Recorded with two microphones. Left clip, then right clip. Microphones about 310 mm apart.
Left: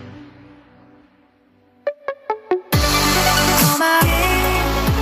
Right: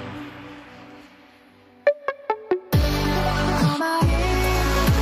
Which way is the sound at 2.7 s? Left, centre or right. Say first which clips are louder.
Left 12 dB; left.